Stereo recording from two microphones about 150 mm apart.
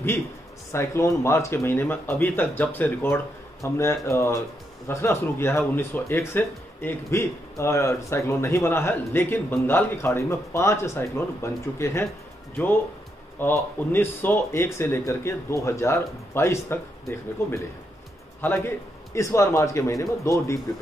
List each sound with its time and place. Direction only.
0.7 s speech: 20° left (ahead or behind)
13.4 s a man's voice: 15° left (ahead or behind)